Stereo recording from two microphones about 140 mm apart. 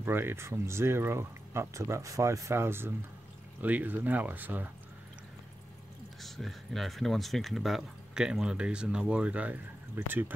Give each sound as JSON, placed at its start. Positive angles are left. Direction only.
{"t": 0.0, "sound": "speech", "side_deg": -15}
{"t": 6.2, "sound": "speech", "side_deg": 0}